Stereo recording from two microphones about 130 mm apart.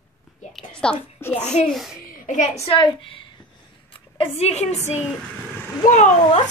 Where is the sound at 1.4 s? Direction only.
60° left (ahead or behind).